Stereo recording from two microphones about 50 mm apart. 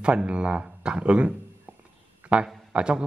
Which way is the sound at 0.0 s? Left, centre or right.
Right.